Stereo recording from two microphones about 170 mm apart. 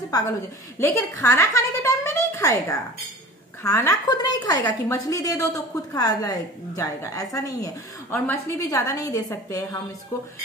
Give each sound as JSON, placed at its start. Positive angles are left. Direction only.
{"t": 0.1, "sound": "a woman's voice", "side_deg": 20}